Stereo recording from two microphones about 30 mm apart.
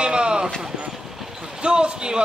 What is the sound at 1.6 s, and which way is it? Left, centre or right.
Speech, right.